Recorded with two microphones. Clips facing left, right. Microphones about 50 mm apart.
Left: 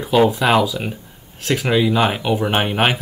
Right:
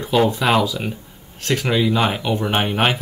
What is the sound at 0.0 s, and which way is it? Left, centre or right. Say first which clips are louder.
Speech: left 2 dB; centre.